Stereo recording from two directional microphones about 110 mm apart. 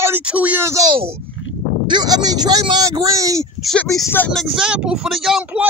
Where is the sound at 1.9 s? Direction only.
40° right (ahead or behind).